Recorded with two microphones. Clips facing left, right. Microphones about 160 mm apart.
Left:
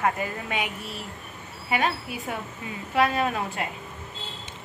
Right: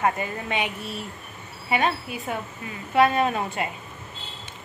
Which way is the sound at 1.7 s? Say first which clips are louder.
Right 2 dB; 5° left (ahead or behind).